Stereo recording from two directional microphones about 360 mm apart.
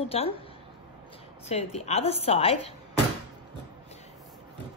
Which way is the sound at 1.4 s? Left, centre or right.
Centre.